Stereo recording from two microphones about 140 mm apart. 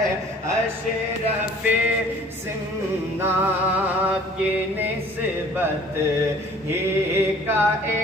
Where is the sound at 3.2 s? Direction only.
10° right (ahead or behind).